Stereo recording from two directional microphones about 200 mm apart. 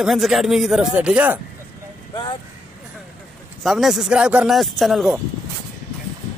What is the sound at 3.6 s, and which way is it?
Speech, centre (ahead or behind).